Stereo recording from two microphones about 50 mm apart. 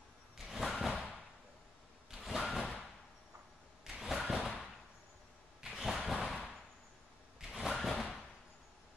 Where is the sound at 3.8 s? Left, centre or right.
Centre.